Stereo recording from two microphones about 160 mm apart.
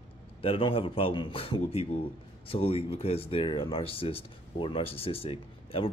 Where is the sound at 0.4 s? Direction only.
35° left (ahead or behind).